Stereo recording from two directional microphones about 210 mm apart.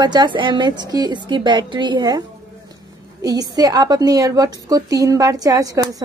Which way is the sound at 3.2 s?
15° right (ahead or behind).